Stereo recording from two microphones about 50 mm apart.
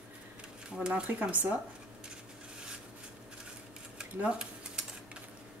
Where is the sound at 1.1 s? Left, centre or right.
Right.